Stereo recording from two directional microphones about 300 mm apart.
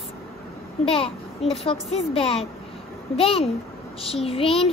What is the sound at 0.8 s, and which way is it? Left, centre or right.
A child's voice, centre.